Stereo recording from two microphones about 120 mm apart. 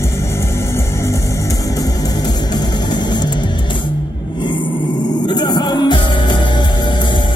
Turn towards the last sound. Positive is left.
turn(degrees=40)  # may be behind; listen again after turning